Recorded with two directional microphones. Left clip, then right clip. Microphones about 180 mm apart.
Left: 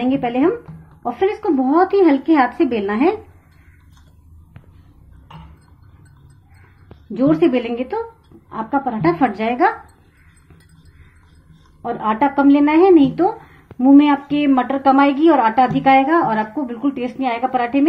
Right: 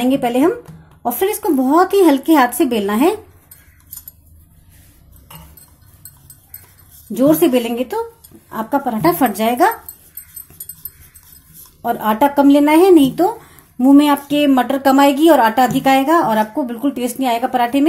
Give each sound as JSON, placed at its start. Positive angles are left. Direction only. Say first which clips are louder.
{"t": 0.0, "sound": "a woman's voice", "louder": "right 3 dB", "side_deg": -55}
{"t": 7.2, "sound": "a woman's voice", "louder": "right 3 dB", "side_deg": -50}
{"t": 11.8, "sound": "a woman's voice", "louder": "right 3 dB", "side_deg": -55}